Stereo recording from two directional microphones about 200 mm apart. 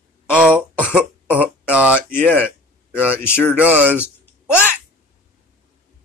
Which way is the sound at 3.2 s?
10° left (ahead or behind).